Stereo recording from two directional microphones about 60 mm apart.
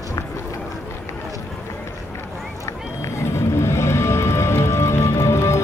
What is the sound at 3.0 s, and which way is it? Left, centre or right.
Music, left.